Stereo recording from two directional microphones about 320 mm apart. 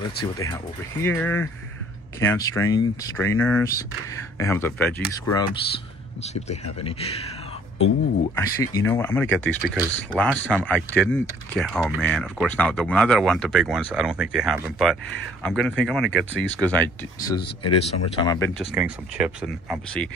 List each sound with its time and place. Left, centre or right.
0.2 s speech: centre
8.4 s speech: centre
17.6 s speech: centre
18.8 s speech: centre